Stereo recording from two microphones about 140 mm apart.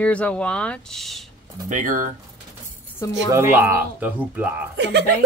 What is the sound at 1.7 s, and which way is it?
Speech, 70° right (ahead or behind).